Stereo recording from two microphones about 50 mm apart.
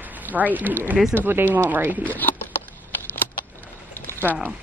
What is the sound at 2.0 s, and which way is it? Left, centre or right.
Speech, left.